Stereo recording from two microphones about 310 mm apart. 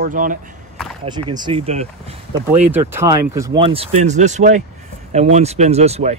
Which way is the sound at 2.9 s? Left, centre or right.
Centre.